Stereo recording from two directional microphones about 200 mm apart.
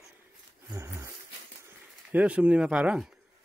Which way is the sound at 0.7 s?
15° right (ahead or behind).